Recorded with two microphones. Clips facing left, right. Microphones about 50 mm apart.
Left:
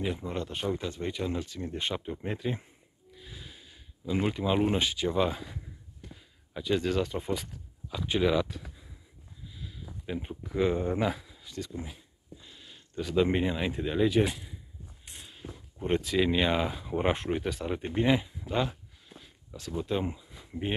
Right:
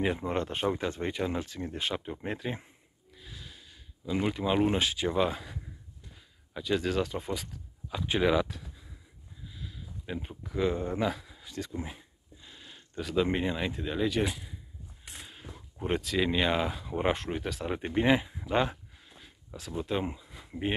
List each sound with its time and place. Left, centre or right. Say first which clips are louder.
0.0 s speech: right 3 dB; right
1.7 s speech: left 2 dB; centre
3.2 s snort: left 1 dB; centre
4.3 s speech: right 1 dB; centre
6.0 s a sound: left 8 dB; left
6.5 s speech: left 1 dB; centre
8.1 s speech: even; centre
9.5 s sniff: right 1 dB; centre
10.0 s speech: left 2 dB; centre
11.2 s speech: even; centre
12.4 s speech: right 1 dB; centre
15.2 s a sound: left 2 dB; centre
16.0 s speech: left 1 dB; centre
19.0 s a sound: left 1 dB; centre